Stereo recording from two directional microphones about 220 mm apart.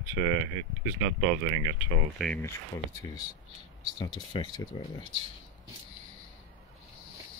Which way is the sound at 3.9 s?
20° left (ahead or behind).